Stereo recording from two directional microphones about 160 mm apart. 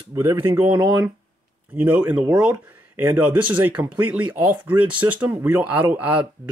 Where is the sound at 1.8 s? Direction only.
10° right (ahead or behind).